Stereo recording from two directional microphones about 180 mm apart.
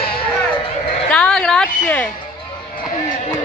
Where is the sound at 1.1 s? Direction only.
5° left (ahead or behind).